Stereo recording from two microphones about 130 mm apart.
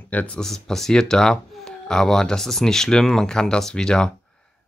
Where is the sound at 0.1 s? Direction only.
10° left (ahead or behind).